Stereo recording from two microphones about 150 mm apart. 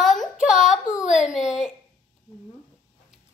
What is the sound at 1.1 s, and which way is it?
Speech, 55° left (ahead or behind).